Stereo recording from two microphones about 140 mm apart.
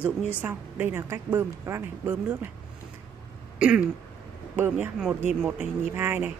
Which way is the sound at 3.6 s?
5° right (ahead or behind).